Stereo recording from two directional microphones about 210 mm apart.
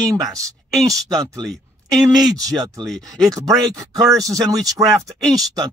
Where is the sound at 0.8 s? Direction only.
Centre (ahead or behind).